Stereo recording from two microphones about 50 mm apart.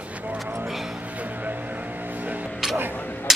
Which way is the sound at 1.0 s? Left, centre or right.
Right.